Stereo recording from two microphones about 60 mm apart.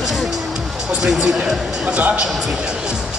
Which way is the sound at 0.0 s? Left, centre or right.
Centre.